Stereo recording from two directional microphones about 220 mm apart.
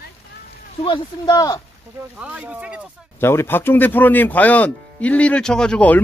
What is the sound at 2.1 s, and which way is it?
Speech, 5° right (ahead or behind).